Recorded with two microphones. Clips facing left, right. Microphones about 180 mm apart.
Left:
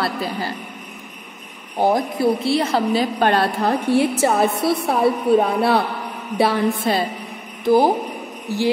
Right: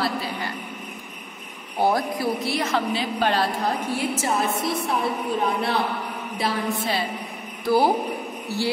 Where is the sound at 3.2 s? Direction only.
60° left (ahead or behind).